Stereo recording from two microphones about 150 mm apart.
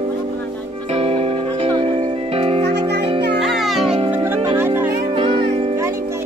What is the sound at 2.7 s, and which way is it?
Music, 90° right.